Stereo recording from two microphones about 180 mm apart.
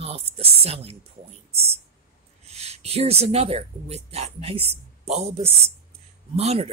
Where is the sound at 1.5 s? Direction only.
35° right (ahead or behind).